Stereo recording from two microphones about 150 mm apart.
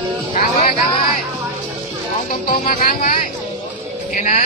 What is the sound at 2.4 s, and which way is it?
Music, 65° left (ahead or behind).